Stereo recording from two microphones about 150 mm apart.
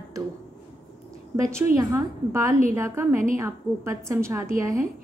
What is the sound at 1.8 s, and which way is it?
A woman's voice, 20° right (ahead or behind).